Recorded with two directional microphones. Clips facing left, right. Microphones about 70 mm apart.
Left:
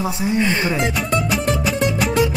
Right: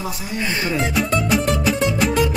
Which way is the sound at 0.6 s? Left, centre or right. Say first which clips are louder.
Left 2 dB; centre.